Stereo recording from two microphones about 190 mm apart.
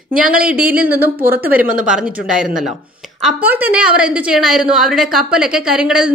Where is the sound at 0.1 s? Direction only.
45° right (ahead or behind).